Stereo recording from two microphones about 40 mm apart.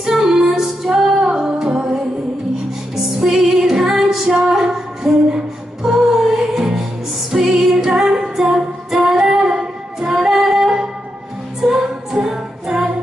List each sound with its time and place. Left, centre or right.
0.0 s female singing: centre
1.2 s music: right
3.0 s music: centre